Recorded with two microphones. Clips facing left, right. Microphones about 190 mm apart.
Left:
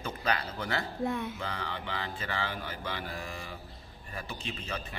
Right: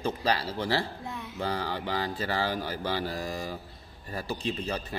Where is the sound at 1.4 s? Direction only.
35° right (ahead or behind).